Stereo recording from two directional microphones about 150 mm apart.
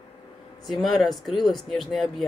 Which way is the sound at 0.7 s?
Centre (ahead or behind).